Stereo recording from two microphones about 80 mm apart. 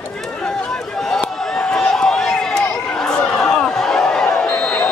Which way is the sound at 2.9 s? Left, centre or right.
Centre.